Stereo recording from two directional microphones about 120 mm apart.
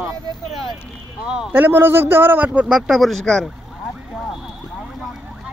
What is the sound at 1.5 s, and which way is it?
A man's voice, 15° right (ahead or behind).